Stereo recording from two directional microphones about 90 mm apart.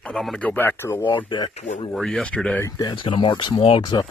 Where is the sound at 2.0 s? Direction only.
5° left (ahead or behind).